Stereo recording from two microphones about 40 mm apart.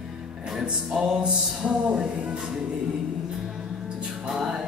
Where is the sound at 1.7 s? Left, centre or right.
Centre.